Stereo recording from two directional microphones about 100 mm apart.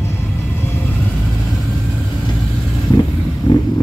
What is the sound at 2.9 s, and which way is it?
Vehicle, 40° left (ahead or behind).